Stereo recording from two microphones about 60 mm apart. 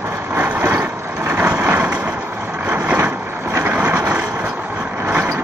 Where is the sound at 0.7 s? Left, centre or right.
Right.